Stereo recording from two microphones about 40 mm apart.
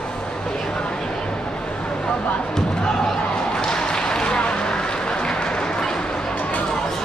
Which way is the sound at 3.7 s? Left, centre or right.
Centre.